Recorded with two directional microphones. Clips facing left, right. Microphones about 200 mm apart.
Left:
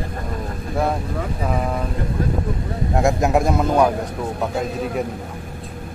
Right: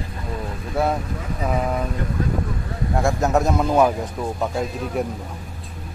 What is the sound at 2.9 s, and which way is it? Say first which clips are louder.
Speech: left 2 dB; 15° left (ahead or behind).